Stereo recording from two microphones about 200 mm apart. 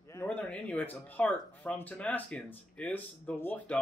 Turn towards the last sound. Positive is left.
turn(degrees=10)  # may be behind; listen again after turning